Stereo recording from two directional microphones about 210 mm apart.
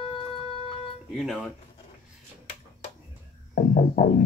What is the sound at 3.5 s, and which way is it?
Music, 40° left (ahead or behind).